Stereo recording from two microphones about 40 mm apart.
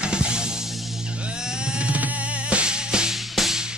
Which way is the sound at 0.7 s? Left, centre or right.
Centre.